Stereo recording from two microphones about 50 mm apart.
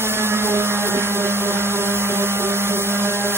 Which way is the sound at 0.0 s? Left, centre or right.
Right.